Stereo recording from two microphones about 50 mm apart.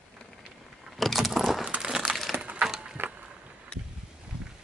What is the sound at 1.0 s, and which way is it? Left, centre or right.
Vehicle, centre.